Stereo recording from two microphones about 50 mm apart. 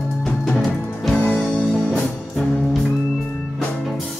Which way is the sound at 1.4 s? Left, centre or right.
Left.